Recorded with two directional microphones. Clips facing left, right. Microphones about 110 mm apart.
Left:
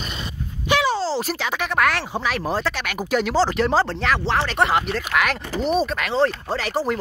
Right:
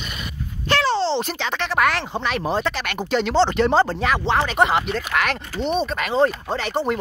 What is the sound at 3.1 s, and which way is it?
Speech, 5° left (ahead or behind).